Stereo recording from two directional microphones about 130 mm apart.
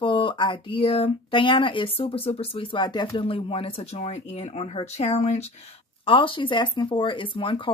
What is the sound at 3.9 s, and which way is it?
Speech, 60° left (ahead or behind).